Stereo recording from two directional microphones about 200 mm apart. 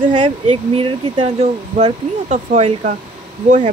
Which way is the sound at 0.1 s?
25° right (ahead or behind).